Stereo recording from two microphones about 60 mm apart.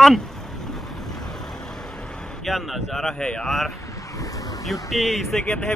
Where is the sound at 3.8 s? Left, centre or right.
Left.